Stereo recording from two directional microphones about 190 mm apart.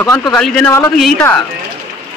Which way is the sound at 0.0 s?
20° left (ahead or behind).